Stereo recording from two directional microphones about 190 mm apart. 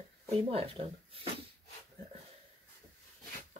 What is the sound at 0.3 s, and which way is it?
Speech, 30° right (ahead or behind).